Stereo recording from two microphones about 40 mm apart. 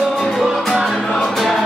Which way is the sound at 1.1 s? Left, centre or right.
Centre.